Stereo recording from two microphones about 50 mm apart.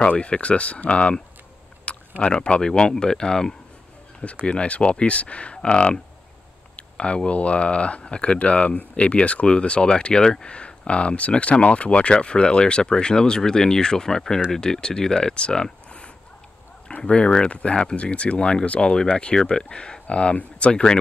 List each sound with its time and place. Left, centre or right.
0.0 s speech: left